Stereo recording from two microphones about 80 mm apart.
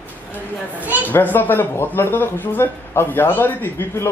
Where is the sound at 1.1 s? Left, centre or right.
Left.